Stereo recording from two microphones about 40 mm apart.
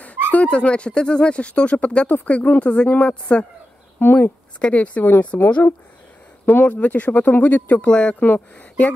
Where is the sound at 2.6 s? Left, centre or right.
Left.